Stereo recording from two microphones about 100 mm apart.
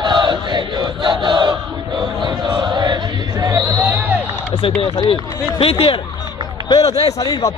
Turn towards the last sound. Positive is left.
turn(degrees=90)